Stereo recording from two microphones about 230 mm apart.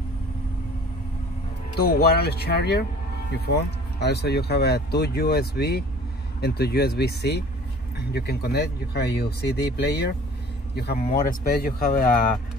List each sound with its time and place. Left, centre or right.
1.8 s speech: left